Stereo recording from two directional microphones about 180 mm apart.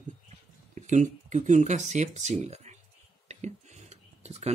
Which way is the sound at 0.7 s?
40° right (ahead or behind).